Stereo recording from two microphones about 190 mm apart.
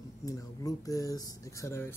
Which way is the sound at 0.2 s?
20° left (ahead or behind).